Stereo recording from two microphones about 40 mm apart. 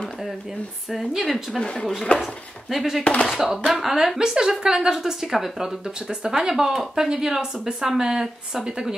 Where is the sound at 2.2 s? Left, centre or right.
Centre.